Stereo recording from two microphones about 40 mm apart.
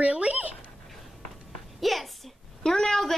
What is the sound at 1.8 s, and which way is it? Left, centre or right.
Speech, centre.